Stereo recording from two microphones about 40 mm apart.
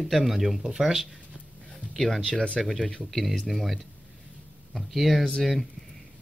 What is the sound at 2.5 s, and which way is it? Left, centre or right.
Speech, centre.